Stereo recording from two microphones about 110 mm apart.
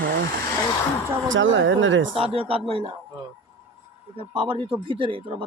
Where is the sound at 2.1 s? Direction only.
60° right (ahead or behind).